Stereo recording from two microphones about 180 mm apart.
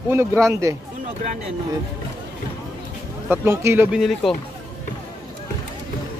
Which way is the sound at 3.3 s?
15° right (ahead or behind).